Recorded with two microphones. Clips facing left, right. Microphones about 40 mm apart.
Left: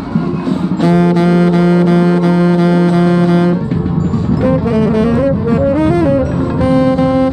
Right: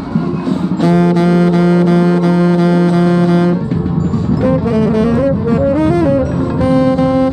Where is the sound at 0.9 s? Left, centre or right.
Centre.